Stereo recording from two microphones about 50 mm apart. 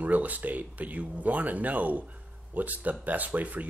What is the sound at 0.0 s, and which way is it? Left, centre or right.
Speech, right.